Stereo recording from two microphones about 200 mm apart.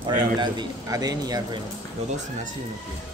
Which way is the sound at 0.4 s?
20° right (ahead or behind).